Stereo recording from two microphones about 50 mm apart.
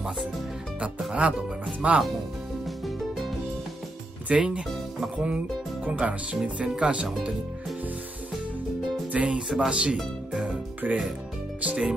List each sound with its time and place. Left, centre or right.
1.2 s speech: right
2.6 s music: centre
4.3 s speech: right
9.1 s speech: centre
10.4 s music: right
11.6 s speech: right